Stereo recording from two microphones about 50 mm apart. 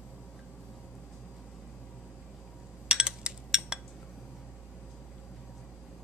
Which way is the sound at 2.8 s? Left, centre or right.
Centre.